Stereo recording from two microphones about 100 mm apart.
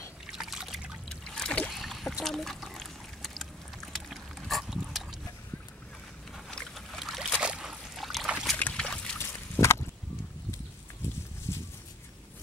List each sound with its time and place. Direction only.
0.3 s trickle: 5° right (ahead or behind)
1.0 s boat: 5° left (ahead or behind)
1.7 s a sound: centre (ahead or behind)
6.5 s boat: 5° left (ahead or behind)
8.5 s boat: 15° left (ahead or behind)
9.2 s a sound: 25° left (ahead or behind)
11.5 s dog: 30° left (ahead or behind)